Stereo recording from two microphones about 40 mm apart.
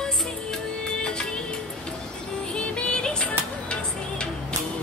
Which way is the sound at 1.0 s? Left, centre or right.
Centre.